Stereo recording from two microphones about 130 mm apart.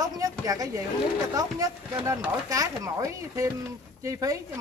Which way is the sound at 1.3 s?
30° right (ahead or behind).